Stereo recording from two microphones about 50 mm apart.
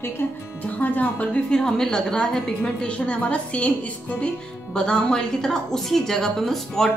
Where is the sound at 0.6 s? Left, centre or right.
Left.